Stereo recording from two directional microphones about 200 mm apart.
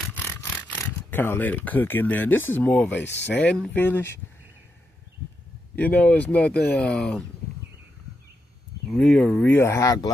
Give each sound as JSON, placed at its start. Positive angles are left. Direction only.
{"t": 0.0, "sound": "a sound", "side_deg": 10}
{"t": 0.7, "sound": "speech", "side_deg": 10}
{"t": 3.1, "sound": "speech", "side_deg": 60}
{"t": 3.3, "sound": "speech", "side_deg": 5}
{"t": 5.8, "sound": "speech", "side_deg": 5}
{"t": 8.9, "sound": "speech", "side_deg": 5}